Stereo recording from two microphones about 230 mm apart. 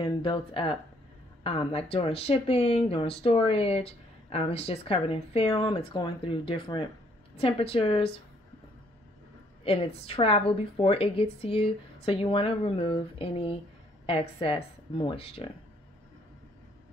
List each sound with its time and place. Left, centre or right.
0.0 s speech: left
9.7 s speech: left